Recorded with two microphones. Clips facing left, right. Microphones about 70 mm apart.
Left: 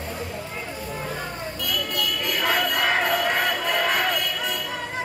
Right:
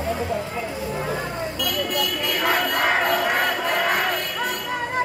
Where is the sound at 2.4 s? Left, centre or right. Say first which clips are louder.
Right 2 dB; centre.